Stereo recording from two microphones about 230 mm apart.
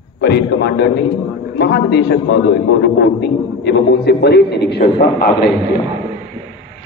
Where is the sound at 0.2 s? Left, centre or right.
Left.